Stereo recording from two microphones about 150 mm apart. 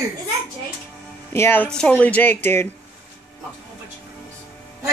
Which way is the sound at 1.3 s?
15° left (ahead or behind).